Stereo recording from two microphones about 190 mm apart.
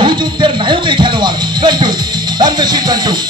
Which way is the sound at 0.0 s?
25° right (ahead or behind).